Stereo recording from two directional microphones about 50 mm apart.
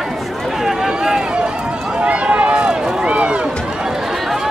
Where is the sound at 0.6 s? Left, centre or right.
Centre.